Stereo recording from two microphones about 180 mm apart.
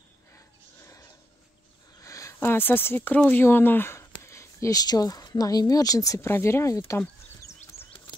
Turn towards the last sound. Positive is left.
turn(degrees=15)  # may be behind; listen again after turning